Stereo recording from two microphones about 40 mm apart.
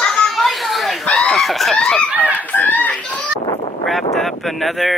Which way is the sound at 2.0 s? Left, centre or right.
Right.